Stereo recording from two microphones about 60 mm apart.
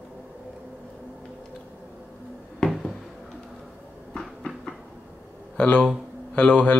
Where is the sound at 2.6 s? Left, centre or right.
Centre.